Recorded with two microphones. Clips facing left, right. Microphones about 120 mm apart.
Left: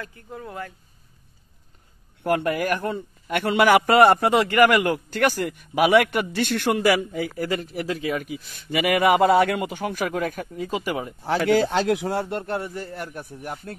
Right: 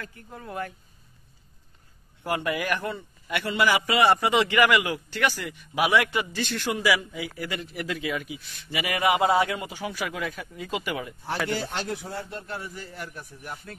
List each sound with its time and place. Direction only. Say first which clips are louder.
2.2 s a man's voice: left 5 dB; 50° left (ahead or behind)
11.4 s a man's voice: left 13 dB; 90° left; by 13.7 s 55° left (ahead or behind)